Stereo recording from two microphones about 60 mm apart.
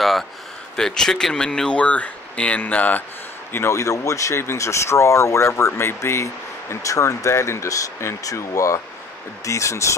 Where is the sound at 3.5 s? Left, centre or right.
Left.